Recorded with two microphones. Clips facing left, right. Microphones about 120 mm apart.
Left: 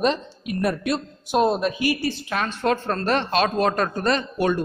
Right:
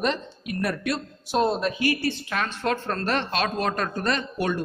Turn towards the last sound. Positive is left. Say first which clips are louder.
# left 4 dB
turn(degrees=30)  # may be behind; listen again after turning